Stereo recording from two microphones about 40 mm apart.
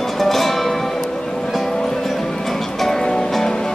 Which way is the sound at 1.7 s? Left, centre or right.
Centre.